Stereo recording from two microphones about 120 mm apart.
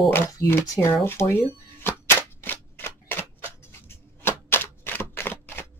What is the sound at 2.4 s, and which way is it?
Scissors, 20° left (ahead or behind).